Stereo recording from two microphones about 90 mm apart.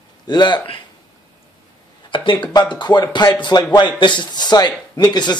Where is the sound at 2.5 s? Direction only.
50° left (ahead or behind).